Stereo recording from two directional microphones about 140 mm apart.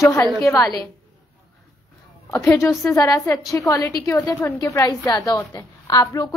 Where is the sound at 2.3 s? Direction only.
20° left (ahead or behind).